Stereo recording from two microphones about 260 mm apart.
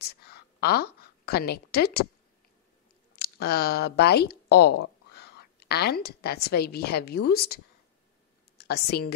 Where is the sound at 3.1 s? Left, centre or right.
Left.